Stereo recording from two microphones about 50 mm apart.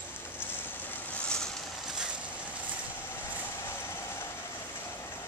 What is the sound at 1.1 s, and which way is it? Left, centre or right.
Vehicle, centre.